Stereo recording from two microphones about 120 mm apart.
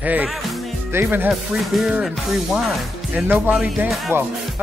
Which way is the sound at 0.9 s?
15° right (ahead or behind).